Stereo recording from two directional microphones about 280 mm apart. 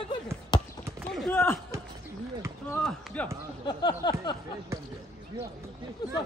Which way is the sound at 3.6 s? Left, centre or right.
Centre.